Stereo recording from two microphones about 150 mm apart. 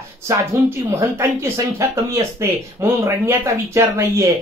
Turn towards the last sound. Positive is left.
turn(degrees=-20)  # may be behind; listen again after turning